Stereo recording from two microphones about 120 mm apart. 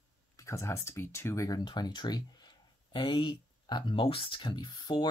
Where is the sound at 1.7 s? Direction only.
35° left (ahead or behind).